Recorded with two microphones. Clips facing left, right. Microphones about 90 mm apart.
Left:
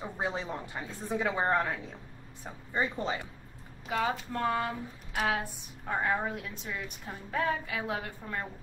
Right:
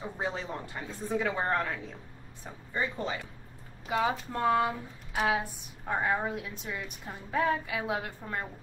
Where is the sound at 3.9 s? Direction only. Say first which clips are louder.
Right 2 dB; 10° right (ahead or behind).